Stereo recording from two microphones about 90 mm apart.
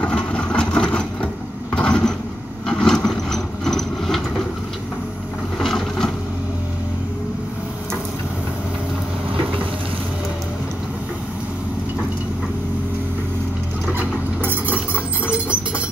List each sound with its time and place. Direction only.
0.0 s vehicle: 15° left (ahead or behind)
5.6 s boat: 5° left (ahead or behind)
13.9 s a sound: 20° right (ahead or behind)